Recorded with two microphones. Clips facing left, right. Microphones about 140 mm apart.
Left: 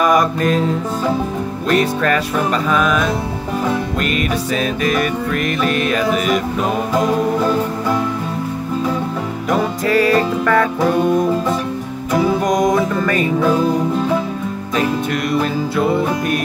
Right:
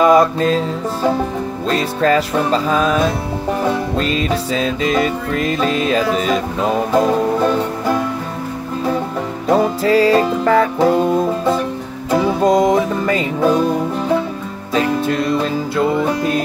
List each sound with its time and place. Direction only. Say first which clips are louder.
0.0 s music: right 3 dB; 25° right (ahead or behind)
1.7 s music: even; 25° right (ahead or behind)
9.5 s music: right 3 dB; 30° right (ahead or behind)
12.1 s music: right 2 dB; 25° right (ahead or behind)
15.0 s music: right 1 dB; 30° right (ahead or behind)